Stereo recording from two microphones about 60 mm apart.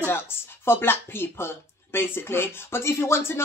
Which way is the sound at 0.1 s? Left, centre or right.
Left.